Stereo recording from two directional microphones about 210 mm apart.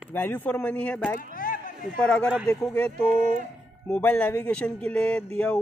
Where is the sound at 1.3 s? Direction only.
40° left (ahead or behind).